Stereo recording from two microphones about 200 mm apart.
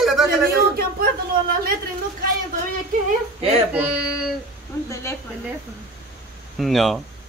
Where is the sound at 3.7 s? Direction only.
5° right (ahead or behind).